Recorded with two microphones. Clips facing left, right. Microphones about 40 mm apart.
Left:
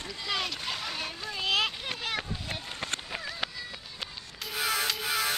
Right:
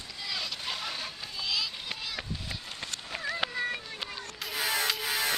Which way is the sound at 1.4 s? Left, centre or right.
Left.